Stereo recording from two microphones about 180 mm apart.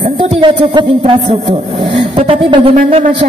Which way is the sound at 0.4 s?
30° right (ahead or behind).